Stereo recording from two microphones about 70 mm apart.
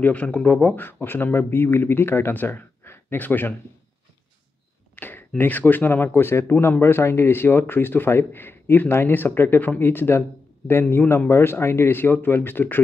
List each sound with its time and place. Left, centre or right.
0.0 s a man's voice: left
4.9 s a sound: left
5.4 s a man's voice: left